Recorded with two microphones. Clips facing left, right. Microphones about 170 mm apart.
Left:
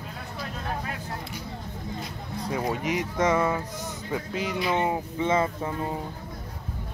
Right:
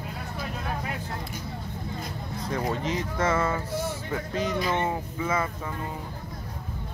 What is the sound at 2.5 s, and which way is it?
Speech, 10° left (ahead or behind).